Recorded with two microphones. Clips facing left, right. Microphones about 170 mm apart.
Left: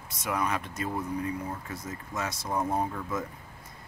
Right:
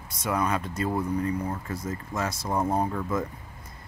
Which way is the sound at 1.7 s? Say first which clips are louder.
Right 5 dB; 50° right (ahead or behind).